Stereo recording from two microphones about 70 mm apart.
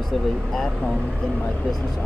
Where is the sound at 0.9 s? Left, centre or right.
Centre.